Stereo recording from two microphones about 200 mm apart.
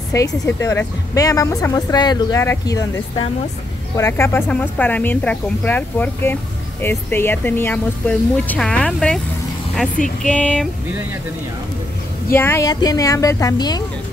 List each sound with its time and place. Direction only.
0.1 s speech: 15° left (ahead or behind)
10.0 s a sound: 5° left (ahead or behind)
12.4 s speech: 15° left (ahead or behind)